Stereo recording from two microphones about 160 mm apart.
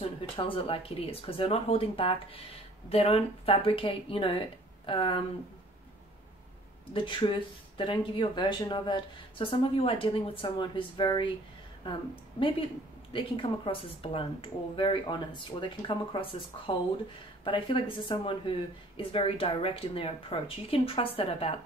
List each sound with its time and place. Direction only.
0.4 s speech: 35° left (ahead or behind)
6.9 s speech: 30° left (ahead or behind)
13.7 s speech: 35° left (ahead or behind)